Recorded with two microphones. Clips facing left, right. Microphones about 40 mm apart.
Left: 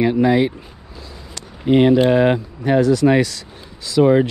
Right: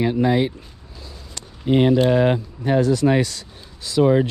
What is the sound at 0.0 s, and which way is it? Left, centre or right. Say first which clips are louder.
Speech: left 3 dB; left.